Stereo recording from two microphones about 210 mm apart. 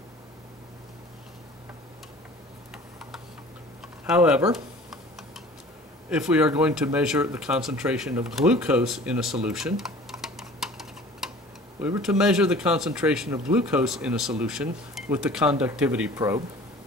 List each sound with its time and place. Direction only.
4.0 s speech: 5° right (ahead or behind)
6.0 s speech: 5° right (ahead or behind)